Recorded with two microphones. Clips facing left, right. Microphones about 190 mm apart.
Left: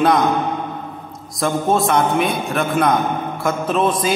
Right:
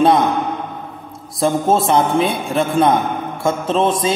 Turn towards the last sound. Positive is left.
turn(degrees=-25)  # may be behind; listen again after turning